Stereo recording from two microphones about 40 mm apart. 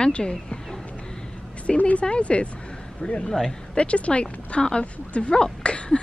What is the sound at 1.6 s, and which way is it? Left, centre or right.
Speech, left.